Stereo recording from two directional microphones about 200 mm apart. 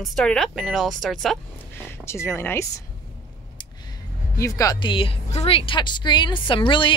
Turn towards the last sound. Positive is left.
turn(degrees=25)  # may be behind; listen again after turning